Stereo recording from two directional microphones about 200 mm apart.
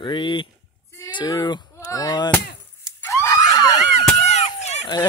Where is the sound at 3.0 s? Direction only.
15° left (ahead or behind).